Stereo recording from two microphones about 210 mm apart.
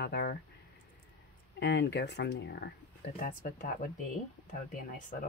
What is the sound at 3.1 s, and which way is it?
Speech, 40° left (ahead or behind).